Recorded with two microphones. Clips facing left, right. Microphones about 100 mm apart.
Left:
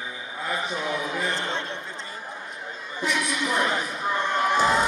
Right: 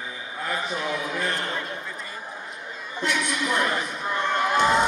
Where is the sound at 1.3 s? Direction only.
25° left (ahead or behind).